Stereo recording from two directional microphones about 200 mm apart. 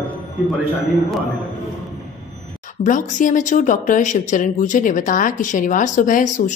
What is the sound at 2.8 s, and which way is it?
A woman's voice, 40° left (ahead or behind).